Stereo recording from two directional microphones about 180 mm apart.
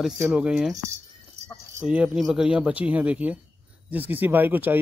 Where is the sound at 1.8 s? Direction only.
5° right (ahead or behind).